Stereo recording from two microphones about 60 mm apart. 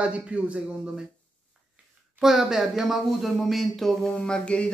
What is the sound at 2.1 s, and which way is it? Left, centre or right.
Speech, centre.